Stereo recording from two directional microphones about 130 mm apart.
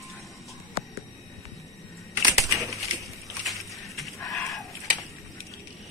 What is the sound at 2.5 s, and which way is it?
Splinter, 25° right (ahead or behind).